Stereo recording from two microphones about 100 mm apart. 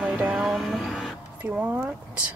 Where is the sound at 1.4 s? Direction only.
15° right (ahead or behind).